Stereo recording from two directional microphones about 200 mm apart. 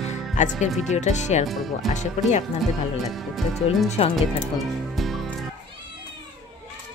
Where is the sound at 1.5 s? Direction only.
Centre (ahead or behind).